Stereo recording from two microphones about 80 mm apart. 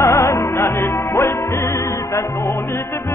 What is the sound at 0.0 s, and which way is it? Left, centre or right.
Music, left.